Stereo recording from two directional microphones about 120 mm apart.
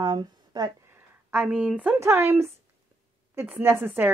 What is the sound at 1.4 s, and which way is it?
Speech, 5° right (ahead or behind).